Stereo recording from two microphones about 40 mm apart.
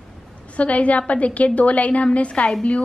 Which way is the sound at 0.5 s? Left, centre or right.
Left.